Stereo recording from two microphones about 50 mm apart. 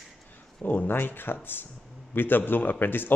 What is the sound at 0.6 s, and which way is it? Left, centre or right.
A man's voice, left.